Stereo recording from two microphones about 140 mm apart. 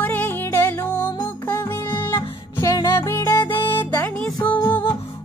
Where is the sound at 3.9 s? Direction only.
10° left (ahead or behind).